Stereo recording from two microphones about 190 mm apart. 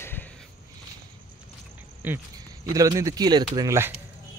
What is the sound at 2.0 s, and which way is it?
Speech, 10° right (ahead or behind).